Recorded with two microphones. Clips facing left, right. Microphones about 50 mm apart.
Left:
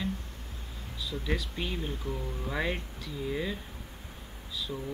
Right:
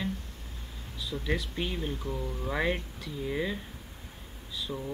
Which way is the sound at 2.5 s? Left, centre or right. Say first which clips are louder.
Right 3 dB; centre.